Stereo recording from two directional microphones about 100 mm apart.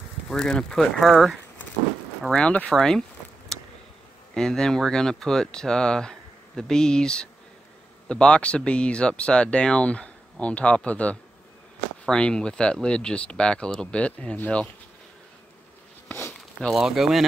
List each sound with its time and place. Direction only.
0.3 s speech: 5° left (ahead or behind)
2.3 s speech: 10° left (ahead or behind)
2.7 s a sound: 5° left (ahead or behind)
4.3 s speech: 5° left (ahead or behind)
16.1 s a sound: 25° left (ahead or behind)
16.6 s speech: 5° right (ahead or behind)